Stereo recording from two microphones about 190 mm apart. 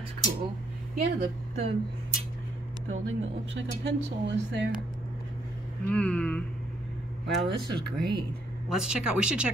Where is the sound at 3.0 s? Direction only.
80° right.